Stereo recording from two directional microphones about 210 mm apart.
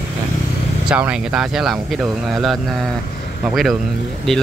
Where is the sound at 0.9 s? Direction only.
5° right (ahead or behind).